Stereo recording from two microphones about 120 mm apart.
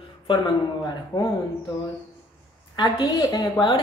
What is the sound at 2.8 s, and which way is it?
A woman's voice, 40° left (ahead or behind).